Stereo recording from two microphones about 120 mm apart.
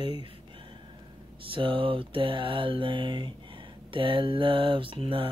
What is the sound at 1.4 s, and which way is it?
Speech, 45° right (ahead or behind).